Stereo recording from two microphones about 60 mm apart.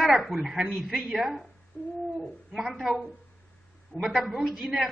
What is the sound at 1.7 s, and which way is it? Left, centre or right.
Bird, left.